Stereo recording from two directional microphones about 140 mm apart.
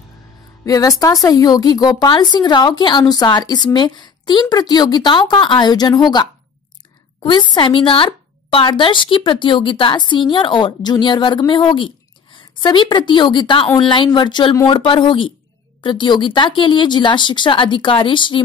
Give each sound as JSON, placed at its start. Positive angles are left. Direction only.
{"t": 0.7, "sound": "a woman's voice", "side_deg": 25}
{"t": 7.2, "sound": "a woman's voice", "side_deg": 35}